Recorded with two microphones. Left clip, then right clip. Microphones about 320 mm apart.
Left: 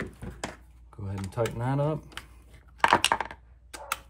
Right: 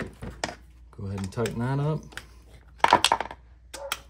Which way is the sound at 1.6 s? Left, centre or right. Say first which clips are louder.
Left 1 dB; left.